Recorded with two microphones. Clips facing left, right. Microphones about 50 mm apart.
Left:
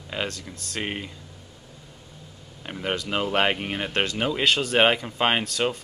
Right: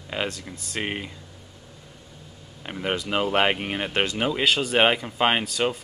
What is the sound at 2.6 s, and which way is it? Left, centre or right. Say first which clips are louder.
Speech: right 1 dB; centre.